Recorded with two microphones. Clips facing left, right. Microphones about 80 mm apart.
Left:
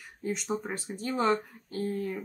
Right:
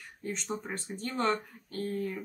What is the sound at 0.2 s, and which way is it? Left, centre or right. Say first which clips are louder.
Speech: left 4 dB; centre.